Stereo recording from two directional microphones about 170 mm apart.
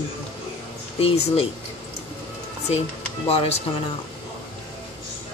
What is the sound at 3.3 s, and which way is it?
Speech, 35° left (ahead or behind).